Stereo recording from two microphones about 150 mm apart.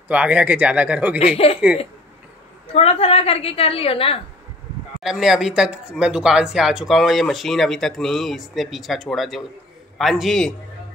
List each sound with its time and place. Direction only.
0.1 s speech: 10° right (ahead or behind)
1.2 s a woman's voice: 40° left (ahead or behind)
2.7 s a woman's voice: 40° left (ahead or behind)
5.0 s speech: 5° right (ahead or behind)